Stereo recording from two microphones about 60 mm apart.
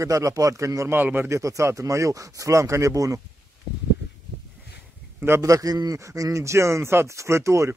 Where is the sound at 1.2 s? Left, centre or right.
Right.